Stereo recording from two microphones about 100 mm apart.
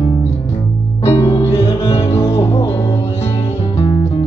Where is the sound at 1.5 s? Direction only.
90° left.